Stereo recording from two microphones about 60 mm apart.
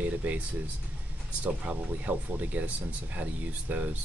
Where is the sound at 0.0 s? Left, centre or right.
Right.